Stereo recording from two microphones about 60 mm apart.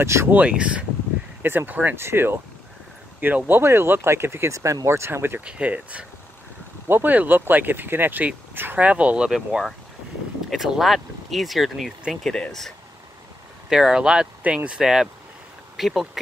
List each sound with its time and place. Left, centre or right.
0.0 s speech: right
0.3 s speech: right
1.4 s speech: right
4.6 s speech: right
5.4 s speech: centre
8.7 s speech: right
9.3 s speech: centre
12.2 s speech: centre
13.7 s speech: centre
14.4 s speech: right
14.8 s speech: centre